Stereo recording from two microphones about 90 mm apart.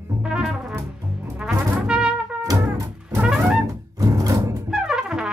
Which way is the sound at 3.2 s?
10° right (ahead or behind).